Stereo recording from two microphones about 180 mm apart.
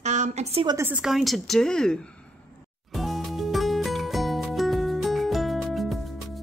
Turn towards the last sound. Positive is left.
turn(degrees=0)  # may be behind; listen again after turning